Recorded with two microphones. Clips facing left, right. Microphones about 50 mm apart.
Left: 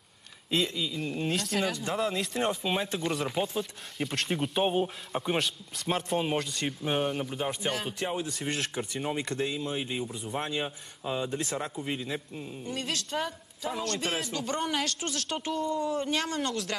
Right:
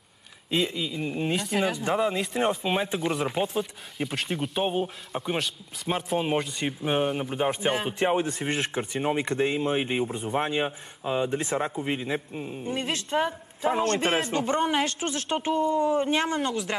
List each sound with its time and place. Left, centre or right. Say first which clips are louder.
0.5 s speech: right 2 dB; centre; by 10.3 s right
10.3 s speech: right 5 dB; right
15.7 s speech: right 6 dB; centre
16.0 s speech: right 5 dB; right
16.3 s speech: right 4 dB; centre